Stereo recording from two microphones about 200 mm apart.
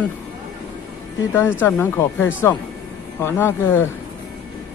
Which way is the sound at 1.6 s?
10° left (ahead or behind).